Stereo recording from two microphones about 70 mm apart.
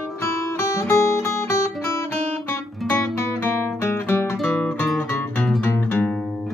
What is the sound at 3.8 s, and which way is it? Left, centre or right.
Music, left.